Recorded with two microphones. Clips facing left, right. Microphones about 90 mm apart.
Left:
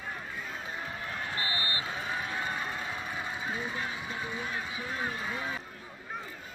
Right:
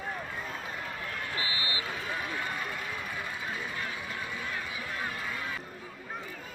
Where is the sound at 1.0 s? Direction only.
25° left (ahead or behind).